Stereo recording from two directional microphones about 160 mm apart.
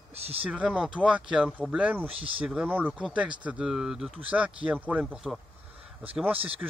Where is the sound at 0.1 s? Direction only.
40° right (ahead or behind).